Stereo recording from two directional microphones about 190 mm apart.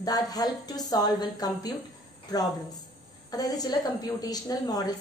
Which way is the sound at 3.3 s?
20° left (ahead or behind).